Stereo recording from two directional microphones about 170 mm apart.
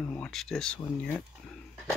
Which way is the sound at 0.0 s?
10° left (ahead or behind).